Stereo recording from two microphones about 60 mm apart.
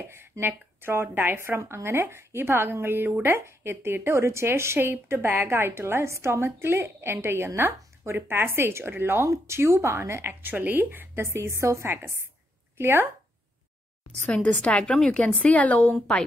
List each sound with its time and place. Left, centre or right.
0.0 s a woman's voice: right
10.4 s a woman's voice: right
11.2 s a woman's voice: right
14.2 s a woman's voice: centre
15.4 s a woman's voice: left